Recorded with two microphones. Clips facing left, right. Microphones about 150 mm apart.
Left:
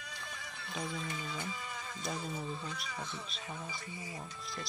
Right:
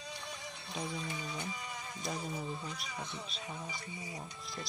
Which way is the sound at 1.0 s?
15° right (ahead or behind).